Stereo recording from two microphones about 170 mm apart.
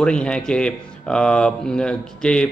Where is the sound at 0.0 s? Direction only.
5° left (ahead or behind).